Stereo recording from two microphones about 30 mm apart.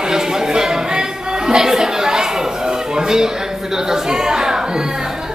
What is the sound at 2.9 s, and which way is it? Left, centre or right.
A man's voice, right.